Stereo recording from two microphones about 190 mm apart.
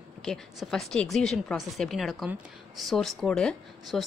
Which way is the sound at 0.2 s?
Centre (ahead or behind).